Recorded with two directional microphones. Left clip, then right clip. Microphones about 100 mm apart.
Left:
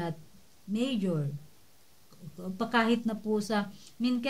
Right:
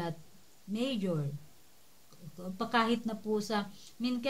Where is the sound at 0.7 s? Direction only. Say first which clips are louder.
Left 2 dB; 20° right (ahead or behind).